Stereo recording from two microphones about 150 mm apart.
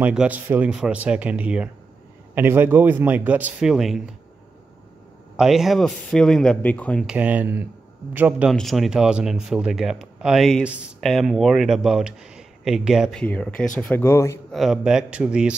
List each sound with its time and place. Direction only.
0.0 s a man's voice: 10° right (ahead or behind)
5.4 s speech: centre (ahead or behind)
7.1 s a man's voice: 10° right (ahead or behind)
13.2 s speech: 5° left (ahead or behind)
14.5 s speech: centre (ahead or behind)